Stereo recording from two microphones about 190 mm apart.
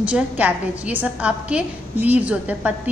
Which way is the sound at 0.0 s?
5° right (ahead or behind).